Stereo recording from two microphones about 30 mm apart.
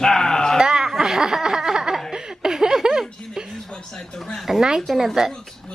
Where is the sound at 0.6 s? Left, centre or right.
Centre.